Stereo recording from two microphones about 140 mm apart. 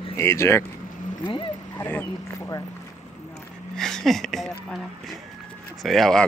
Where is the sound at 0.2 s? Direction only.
20° left (ahead or behind).